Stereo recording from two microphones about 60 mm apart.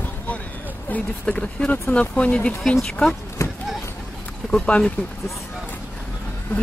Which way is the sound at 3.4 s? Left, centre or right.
Left.